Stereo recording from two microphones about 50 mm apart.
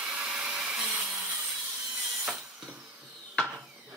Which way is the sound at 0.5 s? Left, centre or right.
Centre.